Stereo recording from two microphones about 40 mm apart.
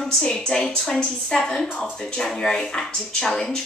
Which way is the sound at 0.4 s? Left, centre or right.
Centre.